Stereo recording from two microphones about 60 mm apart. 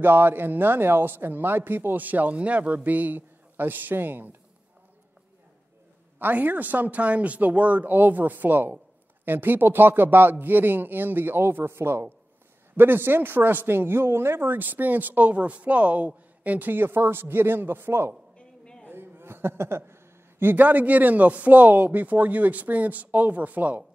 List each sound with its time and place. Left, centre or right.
0.0 s speech: right
6.1 s speech: right
18.4 s a sound: centre
18.9 s a man's voice: right